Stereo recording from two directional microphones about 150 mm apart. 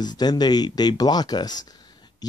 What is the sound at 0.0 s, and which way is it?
Speech, 30° left (ahead or behind).